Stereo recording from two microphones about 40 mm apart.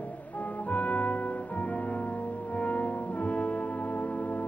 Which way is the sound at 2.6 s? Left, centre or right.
Left.